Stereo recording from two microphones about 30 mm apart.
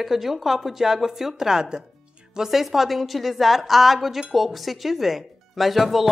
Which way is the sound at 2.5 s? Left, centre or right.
Centre.